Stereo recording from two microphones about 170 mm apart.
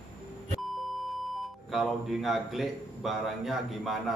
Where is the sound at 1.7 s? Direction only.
Centre (ahead or behind).